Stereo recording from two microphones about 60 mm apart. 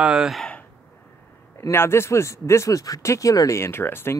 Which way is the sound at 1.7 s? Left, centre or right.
Left.